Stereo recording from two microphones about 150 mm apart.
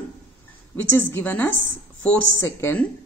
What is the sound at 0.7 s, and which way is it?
A woman's voice, 15° left (ahead or behind).